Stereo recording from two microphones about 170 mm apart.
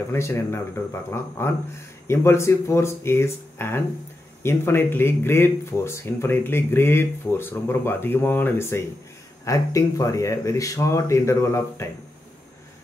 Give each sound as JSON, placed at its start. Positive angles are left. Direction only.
{"t": 0.1, "sound": "speech", "side_deg": 15}
{"t": 2.0, "sound": "speech", "side_deg": 15}